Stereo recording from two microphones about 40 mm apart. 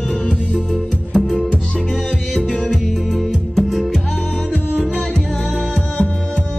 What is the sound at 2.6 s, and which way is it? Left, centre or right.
Music, centre.